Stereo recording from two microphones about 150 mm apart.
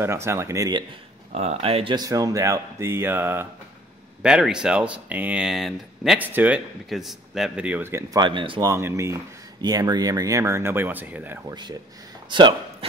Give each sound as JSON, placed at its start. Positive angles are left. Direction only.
{"t": 0.0, "sound": "speech", "side_deg": -20}
{"t": 1.3, "sound": "speech", "side_deg": -45}
{"t": 2.0, "sound": "speech", "side_deg": -25}
{"t": 8.2, "sound": "speech", "side_deg": -35}
{"t": 8.6, "sound": "speech", "side_deg": -20}
{"t": 11.4, "sound": "speech", "side_deg": -30}